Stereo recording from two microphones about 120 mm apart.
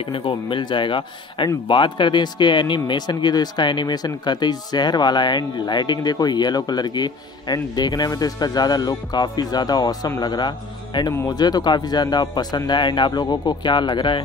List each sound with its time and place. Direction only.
0.1 s speech: 45° left (ahead or behind)